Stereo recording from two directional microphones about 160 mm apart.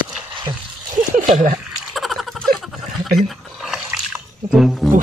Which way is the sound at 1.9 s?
Centre (ahead or behind).